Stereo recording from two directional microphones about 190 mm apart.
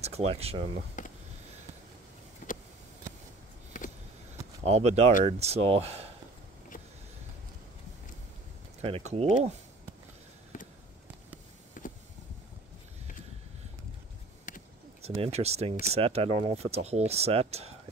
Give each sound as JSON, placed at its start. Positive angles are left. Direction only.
{"t": 0.0, "sound": "speech", "side_deg": -35}
{"t": 2.4, "sound": "vehicle", "side_deg": 45}
{"t": 4.6, "sound": "speech", "side_deg": -35}
{"t": 8.8, "sound": "speech", "side_deg": -30}
{"t": 10.5, "sound": "a sound", "side_deg": 45}
{"t": 11.8, "sound": "a sound", "side_deg": 45}
{"t": 15.0, "sound": "speech", "side_deg": -35}